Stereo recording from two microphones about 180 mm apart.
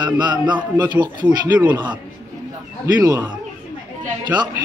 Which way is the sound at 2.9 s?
20° right (ahead or behind).